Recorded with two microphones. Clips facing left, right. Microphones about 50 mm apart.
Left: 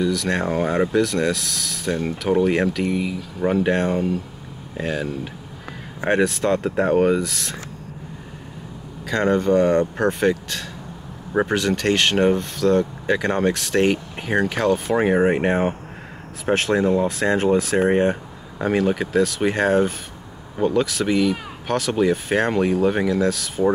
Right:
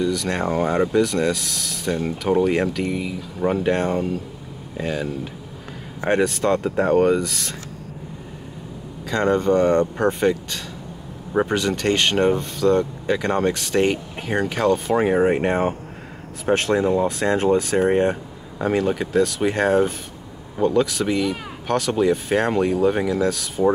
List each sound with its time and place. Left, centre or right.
0.1 s speech: centre
9.0 s speech: centre
13.0 s speech: centre